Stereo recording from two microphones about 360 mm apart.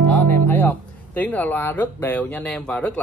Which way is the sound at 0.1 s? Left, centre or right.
Centre.